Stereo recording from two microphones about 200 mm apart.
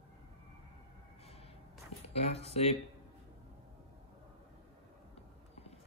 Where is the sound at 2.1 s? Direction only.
30° left (ahead or behind).